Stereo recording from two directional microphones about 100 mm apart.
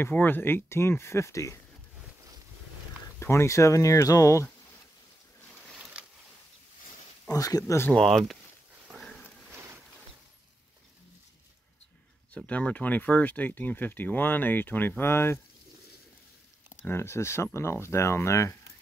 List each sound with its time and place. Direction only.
0.0 s speech: 20° left (ahead or behind)
3.2 s speech: 25° left (ahead or behind)
6.0 s a sound: 10° right (ahead or behind)
7.2 s speech: 35° left (ahead or behind)
7.9 s speech: 5° left (ahead or behind)
8.9 s dog: 5° left (ahead or behind)
9.5 s boat: 30° right (ahead or behind)
12.4 s speech: 15° left (ahead or behind)
16.8 s speech: 25° left (ahead or behind)